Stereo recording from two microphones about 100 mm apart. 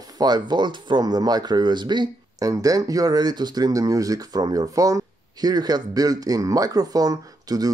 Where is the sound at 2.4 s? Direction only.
35° right (ahead or behind).